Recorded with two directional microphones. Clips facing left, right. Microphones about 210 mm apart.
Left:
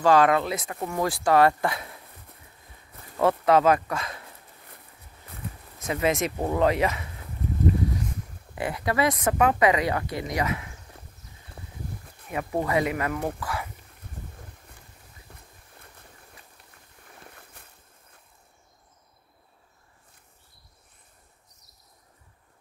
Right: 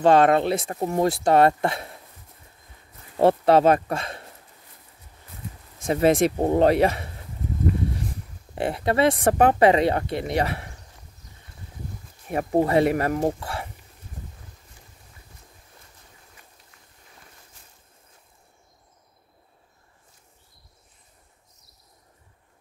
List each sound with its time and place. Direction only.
0.0 s speech: 25° right (ahead or behind)
3.2 s speech: 30° right (ahead or behind)
5.9 s speech: 35° right (ahead or behind)
8.0 s a sound: 30° right (ahead or behind)
9.6 s speech: 30° right (ahead or behind)
12.3 s speech: 40° right (ahead or behind)
17.4 s boat: 60° left (ahead or behind)